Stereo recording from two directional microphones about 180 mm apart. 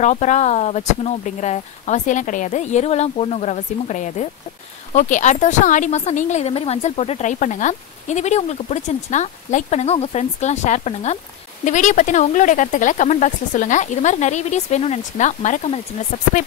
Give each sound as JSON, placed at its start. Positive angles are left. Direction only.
{"t": 0.0, "sound": "speech", "side_deg": 40}